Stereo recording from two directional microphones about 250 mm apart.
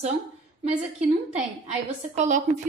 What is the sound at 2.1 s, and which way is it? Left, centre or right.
Speech, right.